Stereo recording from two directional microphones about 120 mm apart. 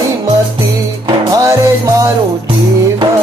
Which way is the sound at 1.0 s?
30° right (ahead or behind).